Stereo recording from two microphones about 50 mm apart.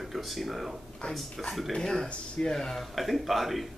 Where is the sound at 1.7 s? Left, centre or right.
Centre.